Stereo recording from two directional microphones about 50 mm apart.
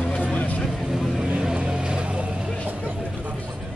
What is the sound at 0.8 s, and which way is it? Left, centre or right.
Vehicle, centre.